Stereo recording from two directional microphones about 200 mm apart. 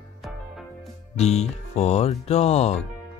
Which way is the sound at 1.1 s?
35° left (ahead or behind).